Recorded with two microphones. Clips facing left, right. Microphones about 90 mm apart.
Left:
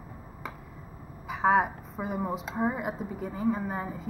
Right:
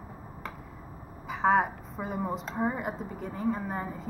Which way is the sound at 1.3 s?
Centre (ahead or behind).